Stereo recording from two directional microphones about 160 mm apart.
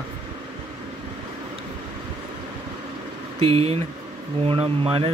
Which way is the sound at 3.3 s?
40° right (ahead or behind).